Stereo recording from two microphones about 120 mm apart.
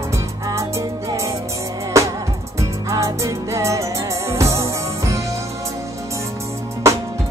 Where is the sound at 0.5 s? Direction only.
25° right (ahead or behind).